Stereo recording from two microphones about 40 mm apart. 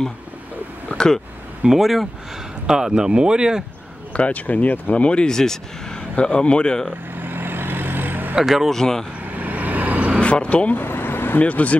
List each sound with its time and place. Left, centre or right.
0.9 s speech: centre
1.7 s speech: centre
2.6 s speech: right
4.1 s speech: left
4.9 s speech: left
5.3 s speech: centre
7.2 s vehicle: right
8.4 s speech: centre
8.6 s speech: centre
9.3 s vehicle: right
10.2 s speech: left
10.8 s vehicle: left
11.4 s speech: left